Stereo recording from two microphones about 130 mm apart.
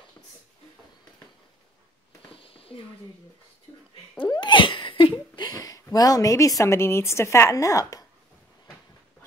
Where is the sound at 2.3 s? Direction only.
45° left (ahead or behind).